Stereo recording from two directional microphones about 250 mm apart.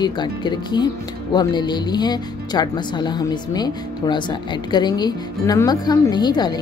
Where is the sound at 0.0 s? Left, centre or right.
Centre.